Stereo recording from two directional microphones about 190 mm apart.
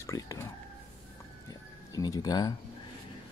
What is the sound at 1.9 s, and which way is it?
Speech, 20° left (ahead or behind).